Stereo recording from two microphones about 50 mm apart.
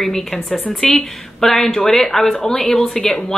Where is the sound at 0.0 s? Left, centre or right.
Centre.